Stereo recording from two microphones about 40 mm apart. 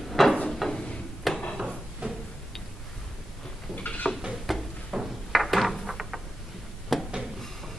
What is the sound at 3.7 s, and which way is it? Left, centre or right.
Dishes, left.